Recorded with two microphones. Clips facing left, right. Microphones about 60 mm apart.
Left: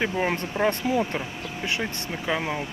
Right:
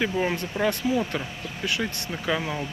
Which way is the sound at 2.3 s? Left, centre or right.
Left.